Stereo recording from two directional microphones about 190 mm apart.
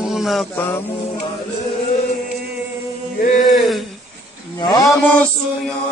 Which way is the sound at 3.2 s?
45° left (ahead or behind).